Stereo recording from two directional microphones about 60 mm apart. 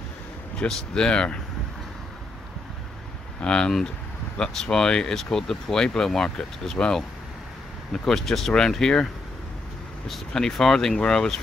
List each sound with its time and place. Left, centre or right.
0.7 s speech: centre
3.3 s speech: centre